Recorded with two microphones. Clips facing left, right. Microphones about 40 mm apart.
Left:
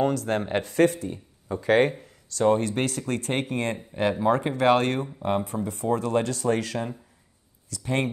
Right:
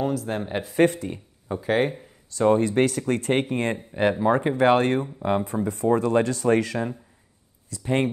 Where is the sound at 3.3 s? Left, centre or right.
Right.